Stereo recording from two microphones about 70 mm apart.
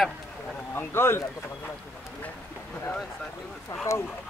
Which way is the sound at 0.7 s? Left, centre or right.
Left.